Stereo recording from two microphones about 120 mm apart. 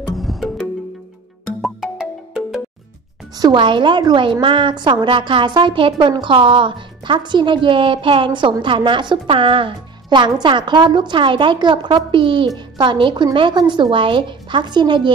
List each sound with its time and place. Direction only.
0.1 s music: centre (ahead or behind)
1.6 s music: 5° right (ahead or behind)
3.3 s a woman's voice: 40° right (ahead or behind)